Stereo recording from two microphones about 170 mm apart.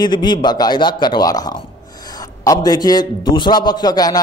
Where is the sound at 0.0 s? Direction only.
25° left (ahead or behind).